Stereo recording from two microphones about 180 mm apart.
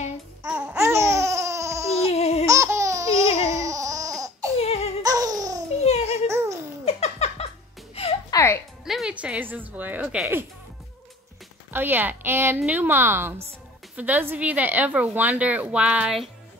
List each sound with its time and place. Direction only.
0.5 s babbling: 5° right (ahead or behind)
2.0 s laughter: 35° left (ahead or behind)
2.4 s laughter: 15° right (ahead or behind)
4.6 s a sound: 35° left (ahead or behind)
5.0 s baby laughter: 20° right (ahead or behind)
5.9 s a sound: 35° left (ahead or behind)
6.2 s babbling: 15° right (ahead or behind)
6.8 s a sound: 35° left (ahead or behind)
8.3 s music: 15° left (ahead or behind)
8.8 s music: 5° right (ahead or behind)
11.7 s speech: 10° right (ahead or behind)